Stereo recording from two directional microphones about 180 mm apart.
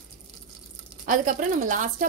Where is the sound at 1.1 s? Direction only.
45° right (ahead or behind).